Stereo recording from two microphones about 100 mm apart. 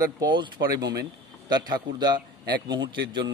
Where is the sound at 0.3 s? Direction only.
45° right (ahead or behind).